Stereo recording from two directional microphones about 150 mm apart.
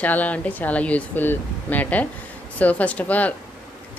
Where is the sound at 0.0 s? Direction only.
10° left (ahead or behind).